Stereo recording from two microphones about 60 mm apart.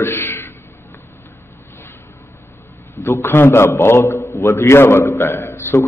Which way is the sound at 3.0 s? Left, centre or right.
Left.